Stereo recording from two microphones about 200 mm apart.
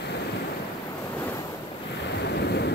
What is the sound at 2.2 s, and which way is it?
Waves, 55° left (ahead or behind).